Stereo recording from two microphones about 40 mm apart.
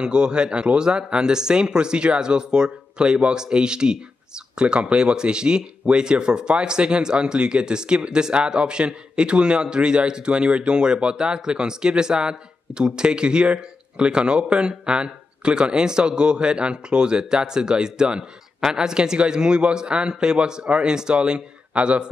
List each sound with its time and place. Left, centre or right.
0.0 s speech: right